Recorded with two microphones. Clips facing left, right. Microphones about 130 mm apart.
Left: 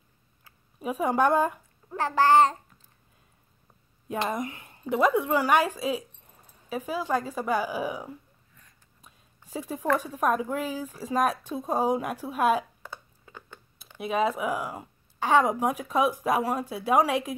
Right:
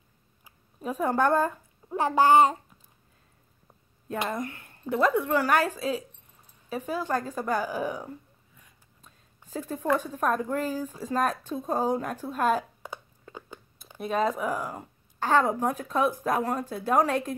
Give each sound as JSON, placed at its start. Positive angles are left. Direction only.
{"t": 0.7, "sound": "speech", "side_deg": 10}
{"t": 1.9, "sound": "a child's voice", "side_deg": -15}
{"t": 4.3, "sound": "speech", "side_deg": 20}
{"t": 9.0, "sound": "a sound", "side_deg": 10}
{"t": 9.9, "sound": "speech", "side_deg": 10}
{"t": 13.9, "sound": "speech", "side_deg": 10}